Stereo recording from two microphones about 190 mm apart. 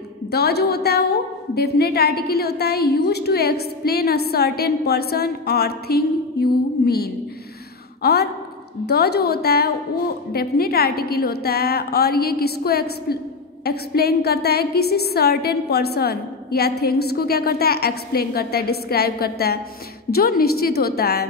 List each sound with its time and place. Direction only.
0.3 s a woman's voice: 55° left (ahead or behind)